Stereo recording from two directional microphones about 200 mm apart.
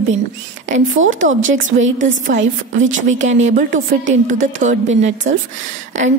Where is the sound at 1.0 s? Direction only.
40° right (ahead or behind).